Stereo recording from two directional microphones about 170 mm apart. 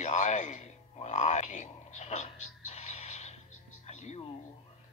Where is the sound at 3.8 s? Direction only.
45° left (ahead or behind).